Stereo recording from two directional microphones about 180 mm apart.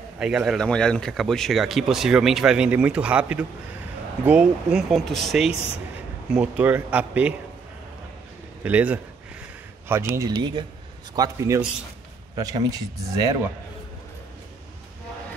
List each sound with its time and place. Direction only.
0.2 s speech: 5° right (ahead or behind)
8.6 s speech: 10° right (ahead or behind)